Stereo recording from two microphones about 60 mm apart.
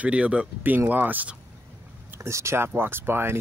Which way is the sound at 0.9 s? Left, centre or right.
Right.